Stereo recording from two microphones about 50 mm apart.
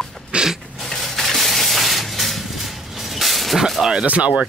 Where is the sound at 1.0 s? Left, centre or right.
Centre.